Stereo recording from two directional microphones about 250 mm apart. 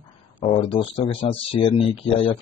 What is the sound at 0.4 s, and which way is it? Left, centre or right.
A man's voice, left.